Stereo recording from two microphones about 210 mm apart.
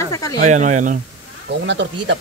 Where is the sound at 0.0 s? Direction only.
15° left (ahead or behind).